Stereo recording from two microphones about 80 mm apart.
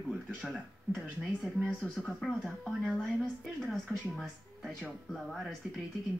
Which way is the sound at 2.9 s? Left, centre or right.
Centre.